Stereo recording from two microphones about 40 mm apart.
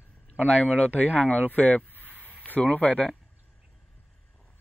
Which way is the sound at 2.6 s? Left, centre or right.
Left.